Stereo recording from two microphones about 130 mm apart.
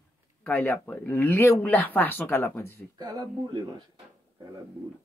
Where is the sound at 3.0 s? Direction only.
35° right (ahead or behind).